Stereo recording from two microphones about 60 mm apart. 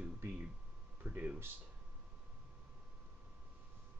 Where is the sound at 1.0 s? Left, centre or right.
Right.